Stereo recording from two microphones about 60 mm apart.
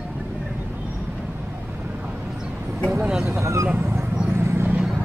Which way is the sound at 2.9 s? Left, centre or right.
Centre.